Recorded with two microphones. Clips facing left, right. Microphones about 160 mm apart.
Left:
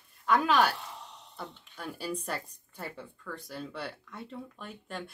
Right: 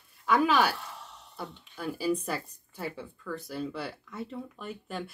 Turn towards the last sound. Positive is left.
turn(degrees=-5)  # may be behind; listen again after turning